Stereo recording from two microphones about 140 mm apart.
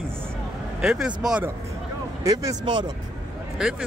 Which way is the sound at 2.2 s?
30° right (ahead or behind).